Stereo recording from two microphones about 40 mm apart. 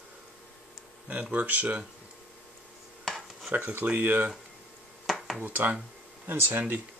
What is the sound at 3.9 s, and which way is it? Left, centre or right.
Speech, right.